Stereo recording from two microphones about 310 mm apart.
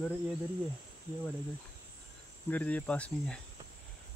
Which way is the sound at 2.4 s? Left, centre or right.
Centre.